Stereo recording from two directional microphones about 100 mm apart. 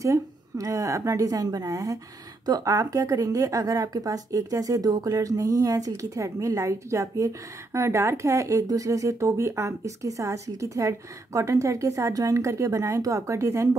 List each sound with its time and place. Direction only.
0.0 s a woman's voice: 35° right (ahead or behind)